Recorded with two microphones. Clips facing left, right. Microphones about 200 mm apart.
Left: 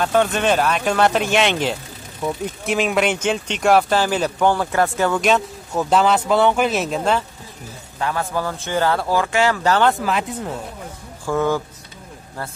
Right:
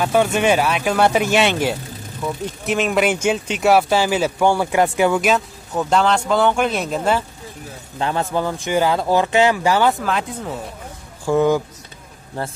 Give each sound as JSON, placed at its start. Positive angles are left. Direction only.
{"t": 0.0, "sound": "speech", "side_deg": -10}
{"t": 8.0, "sound": "speech", "side_deg": -25}
{"t": 9.8, "sound": "speech", "side_deg": 0}
{"t": 11.2, "sound": "speech", "side_deg": -15}